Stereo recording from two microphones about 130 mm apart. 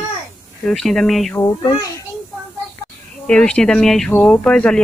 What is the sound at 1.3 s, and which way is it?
Speech, 25° left (ahead or behind).